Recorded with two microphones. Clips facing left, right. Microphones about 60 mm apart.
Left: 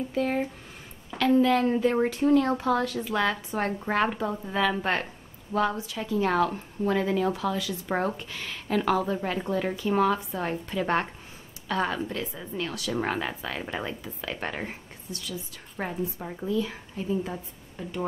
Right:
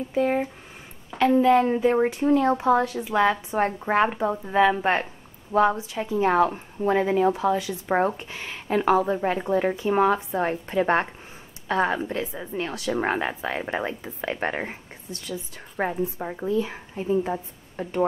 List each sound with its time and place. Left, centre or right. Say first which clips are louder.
0.1 s speech: right 6 dB; centre; by 18.0 s right